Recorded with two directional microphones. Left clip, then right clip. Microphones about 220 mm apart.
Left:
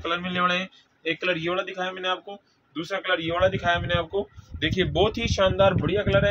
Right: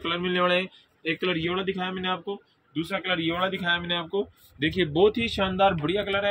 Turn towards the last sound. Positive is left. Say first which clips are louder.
# left 4 dB
turn(degrees=15)  # may be behind; listen again after turning